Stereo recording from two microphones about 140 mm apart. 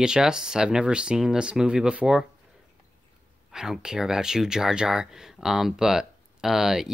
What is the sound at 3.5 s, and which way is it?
Speech, 5° right (ahead or behind).